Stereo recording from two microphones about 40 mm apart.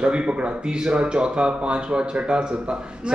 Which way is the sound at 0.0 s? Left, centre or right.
Right.